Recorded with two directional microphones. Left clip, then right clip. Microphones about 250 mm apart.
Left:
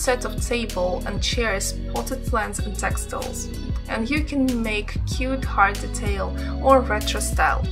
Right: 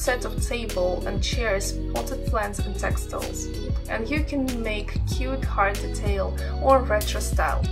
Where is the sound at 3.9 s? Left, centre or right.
Left.